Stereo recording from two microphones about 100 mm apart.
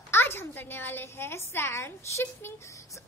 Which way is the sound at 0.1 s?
25° left (ahead or behind).